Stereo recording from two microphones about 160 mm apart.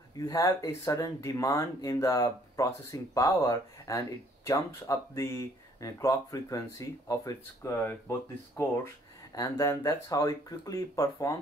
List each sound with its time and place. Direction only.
0.2 s speech: 20° left (ahead or behind)